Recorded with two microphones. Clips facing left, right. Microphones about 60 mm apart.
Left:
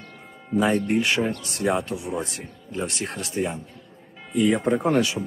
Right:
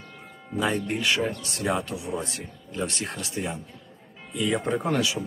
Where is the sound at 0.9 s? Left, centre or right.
Left.